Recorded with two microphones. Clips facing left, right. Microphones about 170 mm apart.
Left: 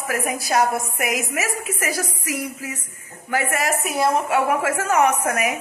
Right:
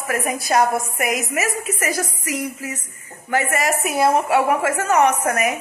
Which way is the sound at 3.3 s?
Centre (ahead or behind).